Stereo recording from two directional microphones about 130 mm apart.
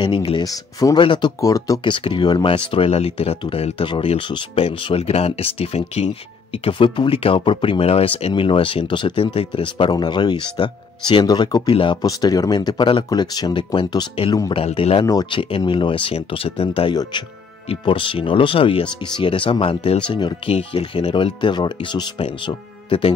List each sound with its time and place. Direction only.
0.0 s speech: 40° left (ahead or behind)
0.4 s speech: 25° left (ahead or behind)
1.4 s speech: 25° left (ahead or behind)
1.9 s speech: 40° left (ahead or behind)
14.5 s speech: 45° left (ahead or behind)
15.0 s speech: 35° left (ahead or behind)
16.9 s speech: 30° left (ahead or behind)
17.6 s speech: 40° left (ahead or behind)